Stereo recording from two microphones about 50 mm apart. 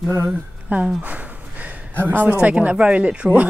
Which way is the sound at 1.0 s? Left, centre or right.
Right.